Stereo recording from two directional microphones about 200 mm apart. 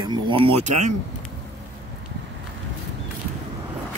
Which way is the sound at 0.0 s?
25° right (ahead or behind).